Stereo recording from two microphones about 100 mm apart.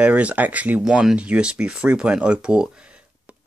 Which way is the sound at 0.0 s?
10° right (ahead or behind).